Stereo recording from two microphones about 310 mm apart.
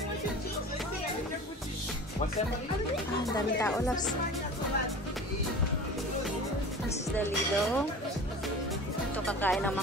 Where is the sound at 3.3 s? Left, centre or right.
Centre.